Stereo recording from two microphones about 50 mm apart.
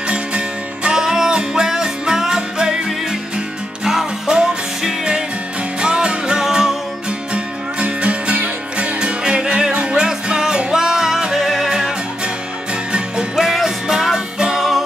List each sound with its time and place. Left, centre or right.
0.8 s music: centre
11.4 s music: centre
12.9 s music: centre
13.4 s music: centre